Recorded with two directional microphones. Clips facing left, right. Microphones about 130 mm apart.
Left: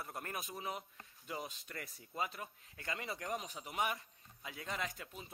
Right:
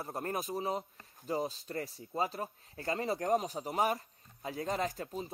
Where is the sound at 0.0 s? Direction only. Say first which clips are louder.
Right 8 dB; 30° right (ahead or behind).